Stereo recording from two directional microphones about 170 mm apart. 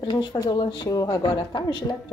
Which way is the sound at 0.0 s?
25° left (ahead or behind).